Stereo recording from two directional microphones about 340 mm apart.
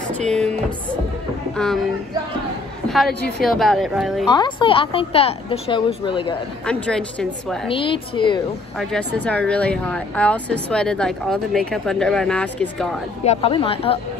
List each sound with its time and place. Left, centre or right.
0.2 s speech: centre
3.3 s speech: centre
4.3 s a woman's voice: centre
6.6 s speech: centre
7.6 s a woman's voice: centre
8.7 s speech: centre
13.2 s a woman's voice: centre